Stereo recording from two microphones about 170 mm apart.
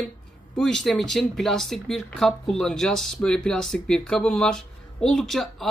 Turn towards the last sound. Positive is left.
turn(degrees=0)  # may be behind; listen again after turning